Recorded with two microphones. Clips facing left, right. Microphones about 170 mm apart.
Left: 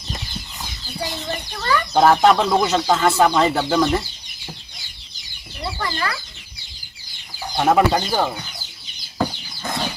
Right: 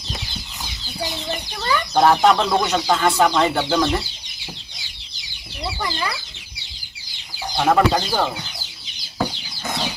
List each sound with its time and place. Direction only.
1.3 s speech: 15° right (ahead or behind)
2.0 s speech: 5° left (ahead or behind)
5.8 s speech: 15° right (ahead or behind)
7.5 s speech: 5° left (ahead or behind)